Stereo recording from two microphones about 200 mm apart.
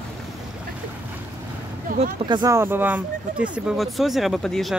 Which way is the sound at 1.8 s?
45° right (ahead or behind).